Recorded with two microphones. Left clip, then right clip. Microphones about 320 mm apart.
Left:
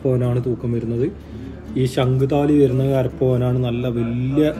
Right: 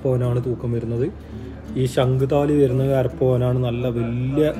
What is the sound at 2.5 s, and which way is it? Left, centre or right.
Speech, right.